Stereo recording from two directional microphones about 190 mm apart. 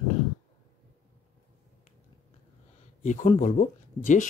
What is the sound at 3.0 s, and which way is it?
Speech, 40° left (ahead or behind).